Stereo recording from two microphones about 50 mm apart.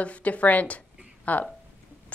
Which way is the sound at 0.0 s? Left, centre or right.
Left.